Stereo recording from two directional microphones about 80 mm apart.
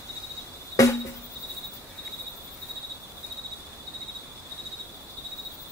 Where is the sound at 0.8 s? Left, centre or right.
Left.